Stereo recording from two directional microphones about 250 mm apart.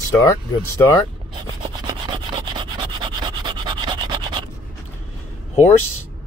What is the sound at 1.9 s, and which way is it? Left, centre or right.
Rub, centre.